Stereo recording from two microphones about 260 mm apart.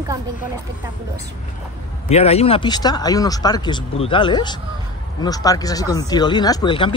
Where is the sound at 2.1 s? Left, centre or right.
Left.